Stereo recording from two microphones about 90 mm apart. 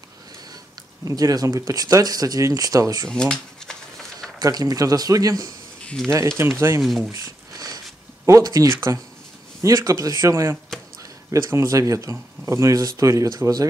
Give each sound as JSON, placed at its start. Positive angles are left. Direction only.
{"t": 1.0, "sound": "speech", "side_deg": -40}
{"t": 3.1, "sound": "a sound", "side_deg": 10}
{"t": 4.4, "sound": "speech", "side_deg": -45}
{"t": 5.9, "sound": "speech", "side_deg": 5}
{"t": 6.3, "sound": "speech", "side_deg": -30}
{"t": 6.8, "sound": "speech", "side_deg": 0}
{"t": 7.1, "sound": "a sound", "side_deg": -45}
{"t": 8.3, "sound": "speech", "side_deg": -40}